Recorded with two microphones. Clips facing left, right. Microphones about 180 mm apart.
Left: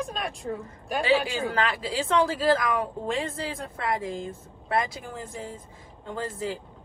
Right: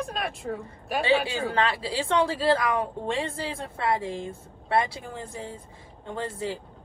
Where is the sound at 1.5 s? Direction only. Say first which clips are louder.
Right 1 dB; 30° right (ahead or behind).